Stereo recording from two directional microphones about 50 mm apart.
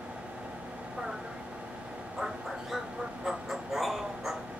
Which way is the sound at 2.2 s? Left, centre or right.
Centre.